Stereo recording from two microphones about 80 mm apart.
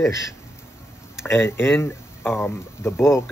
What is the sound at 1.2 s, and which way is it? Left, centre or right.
Speech, left.